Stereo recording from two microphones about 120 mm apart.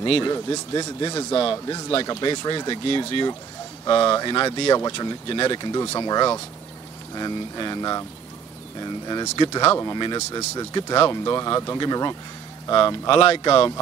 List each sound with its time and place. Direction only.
0.0 s speech: 45° left (ahead or behind)
9.4 s speech: 40° left (ahead or behind); by 10.7 s 25° left (ahead or behind)
10.7 s speech: 35° left (ahead or behind)